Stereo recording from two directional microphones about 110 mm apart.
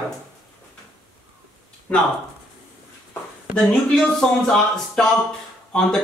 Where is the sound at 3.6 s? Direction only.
5° left (ahead or behind).